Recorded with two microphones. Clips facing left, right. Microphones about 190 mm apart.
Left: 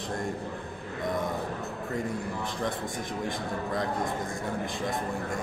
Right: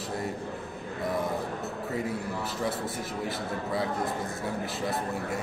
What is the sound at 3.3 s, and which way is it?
Speech, 5° right (ahead or behind).